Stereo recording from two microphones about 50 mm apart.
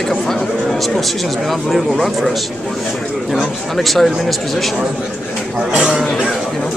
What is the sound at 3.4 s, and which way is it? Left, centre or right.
Speech, centre.